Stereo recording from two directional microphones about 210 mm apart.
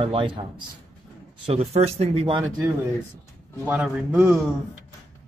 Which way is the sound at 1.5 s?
30° right (ahead or behind).